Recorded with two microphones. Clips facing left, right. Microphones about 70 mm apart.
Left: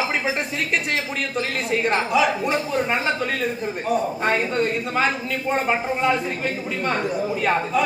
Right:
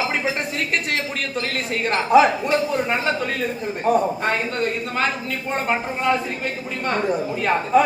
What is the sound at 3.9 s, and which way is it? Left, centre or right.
Speech, right.